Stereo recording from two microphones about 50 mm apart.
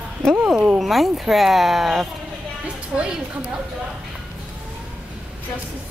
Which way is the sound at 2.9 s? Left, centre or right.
Centre.